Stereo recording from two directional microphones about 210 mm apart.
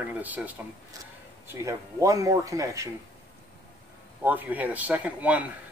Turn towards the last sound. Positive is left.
turn(degrees=-5)  # may be behind; listen again after turning